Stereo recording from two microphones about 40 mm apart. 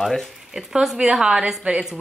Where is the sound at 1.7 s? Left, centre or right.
Right.